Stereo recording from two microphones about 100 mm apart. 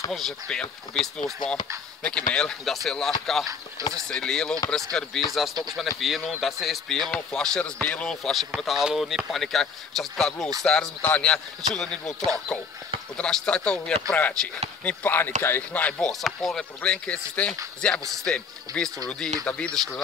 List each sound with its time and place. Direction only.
0.1 s speech: 5° left (ahead or behind)
3.8 s speech: 35° right (ahead or behind)
4.1 s speech: 5° left (ahead or behind)
13.2 s speech: 10° left (ahead or behind)
16.1 s speech: centre (ahead or behind)
18.7 s speech: 40° right (ahead or behind)
19.0 s speech: 10° left (ahead or behind)